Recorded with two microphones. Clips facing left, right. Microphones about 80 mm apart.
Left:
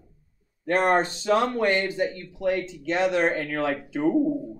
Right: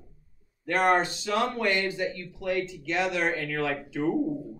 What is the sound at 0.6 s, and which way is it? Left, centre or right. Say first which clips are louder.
Speech: left 2 dB; left.